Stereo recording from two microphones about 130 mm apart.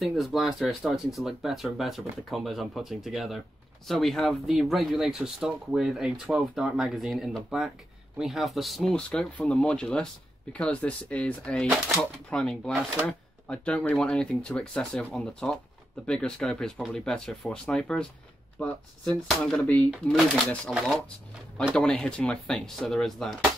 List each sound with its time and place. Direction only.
0.0 s speech: centre (ahead or behind)